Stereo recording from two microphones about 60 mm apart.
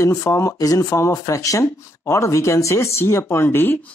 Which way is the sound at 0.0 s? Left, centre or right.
Left.